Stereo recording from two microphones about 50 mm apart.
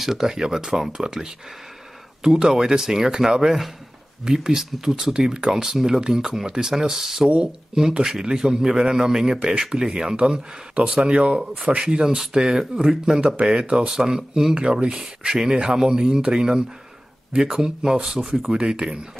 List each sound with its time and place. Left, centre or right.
0.0 s speech: centre
14.5 s speech: right